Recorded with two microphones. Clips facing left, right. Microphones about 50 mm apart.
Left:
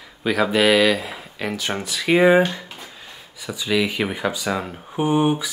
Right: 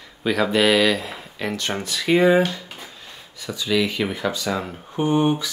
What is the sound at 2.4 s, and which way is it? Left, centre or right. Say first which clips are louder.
Speech: left 1 dB; left.